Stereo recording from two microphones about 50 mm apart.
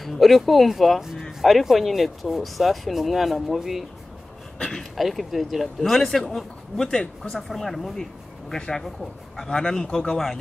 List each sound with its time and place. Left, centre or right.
0.0 s speech: centre
4.9 s a man's voice: centre